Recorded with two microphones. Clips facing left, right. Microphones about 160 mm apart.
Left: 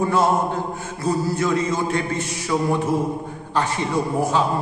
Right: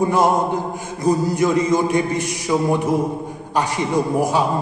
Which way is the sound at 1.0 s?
15° right (ahead or behind).